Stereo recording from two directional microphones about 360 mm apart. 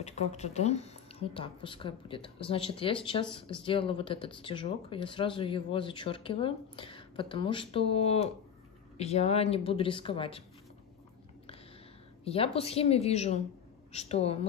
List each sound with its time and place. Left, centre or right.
0.0 s speech: centre
12.3 s speech: centre